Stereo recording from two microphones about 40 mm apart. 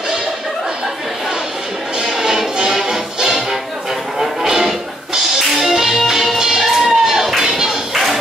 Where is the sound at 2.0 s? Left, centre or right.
Centre.